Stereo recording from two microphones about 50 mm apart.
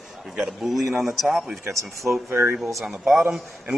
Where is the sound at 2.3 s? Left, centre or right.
Right.